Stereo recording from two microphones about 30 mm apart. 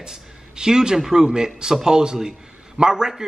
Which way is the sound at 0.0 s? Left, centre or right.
Right.